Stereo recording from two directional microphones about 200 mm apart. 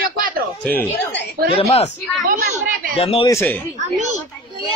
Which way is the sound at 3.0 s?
30° left (ahead or behind).